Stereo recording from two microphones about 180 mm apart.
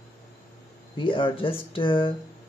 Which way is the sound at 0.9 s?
30° left (ahead or behind).